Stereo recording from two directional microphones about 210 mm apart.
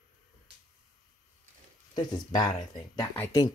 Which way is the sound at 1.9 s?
20° left (ahead or behind).